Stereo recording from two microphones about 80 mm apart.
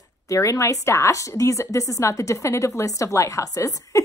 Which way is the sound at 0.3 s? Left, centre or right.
Left.